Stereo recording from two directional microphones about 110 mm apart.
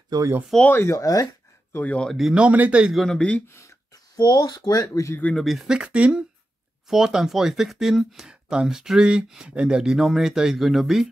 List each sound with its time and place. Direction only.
0.1 s speech: 35° right (ahead or behind)
0.7 s speech: 25° left (ahead or behind)
1.8 s speech: 10° left (ahead or behind)
2.1 s speech: 5° right (ahead or behind)
3.0 s speech: 10° left (ahead or behind)
3.4 s speech: 25° left (ahead or behind)
5.2 s speech: 5° left (ahead or behind)